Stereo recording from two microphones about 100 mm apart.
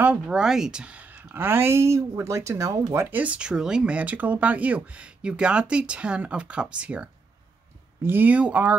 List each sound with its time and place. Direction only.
0.0 s speech: 15° right (ahead or behind)
0.4 s speech: 5° right (ahead or behind); by 3.2 s 25° right (ahead or behind)
3.2 s speech: 10° right (ahead or behind)